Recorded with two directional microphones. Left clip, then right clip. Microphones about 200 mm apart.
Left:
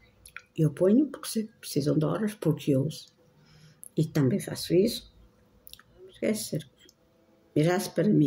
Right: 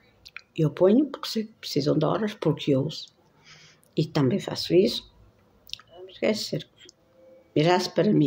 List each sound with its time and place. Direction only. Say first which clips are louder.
0.2 s a sound: right 3 dB; 15° left (ahead or behind)
1.1 s speech: right 4 dB; 15° left (ahead or behind)
5.7 s chewing: right 10 dB; 15° left (ahead or behind)
7.5 s speech: right 5 dB; 15° left (ahead or behind)